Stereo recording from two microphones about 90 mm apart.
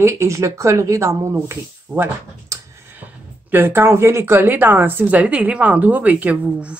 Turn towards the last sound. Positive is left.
turn(degrees=-15)  # may be behind; listen again after turning